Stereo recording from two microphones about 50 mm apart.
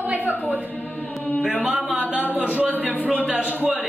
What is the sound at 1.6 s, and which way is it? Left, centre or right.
A woman's voice, right.